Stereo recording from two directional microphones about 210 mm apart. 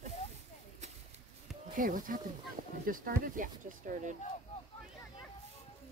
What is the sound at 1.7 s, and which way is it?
Speech, 40° right (ahead or behind).